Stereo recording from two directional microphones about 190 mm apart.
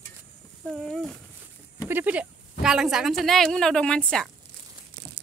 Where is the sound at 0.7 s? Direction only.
Centre (ahead or behind).